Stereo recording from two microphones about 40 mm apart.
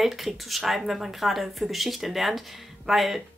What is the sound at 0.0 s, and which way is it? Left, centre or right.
Speech, centre.